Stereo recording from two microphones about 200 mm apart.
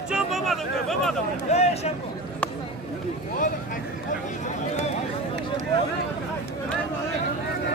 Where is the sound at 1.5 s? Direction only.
30° left (ahead or behind).